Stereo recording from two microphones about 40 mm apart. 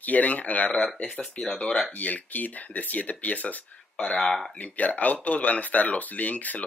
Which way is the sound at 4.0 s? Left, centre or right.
Left.